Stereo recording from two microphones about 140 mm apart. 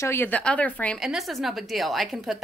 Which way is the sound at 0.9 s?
Centre (ahead or behind).